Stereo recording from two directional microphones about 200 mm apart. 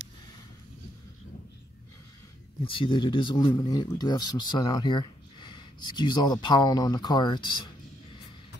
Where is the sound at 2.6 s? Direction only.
25° left (ahead or behind).